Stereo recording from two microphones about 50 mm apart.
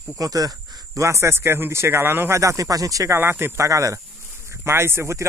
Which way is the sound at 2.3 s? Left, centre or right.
Right.